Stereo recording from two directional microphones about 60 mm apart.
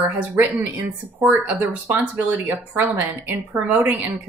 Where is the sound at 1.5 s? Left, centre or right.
Right.